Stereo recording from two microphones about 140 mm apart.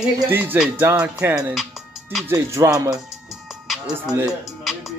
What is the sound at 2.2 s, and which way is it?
Music, 20° right (ahead or behind).